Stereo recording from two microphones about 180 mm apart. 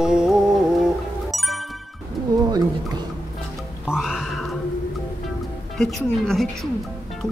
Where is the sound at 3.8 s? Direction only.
5° right (ahead or behind).